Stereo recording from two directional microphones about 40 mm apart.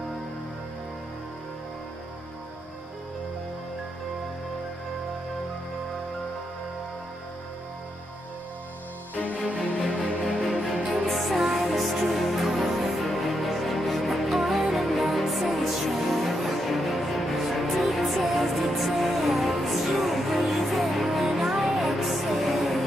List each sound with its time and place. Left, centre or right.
9.6 s music: centre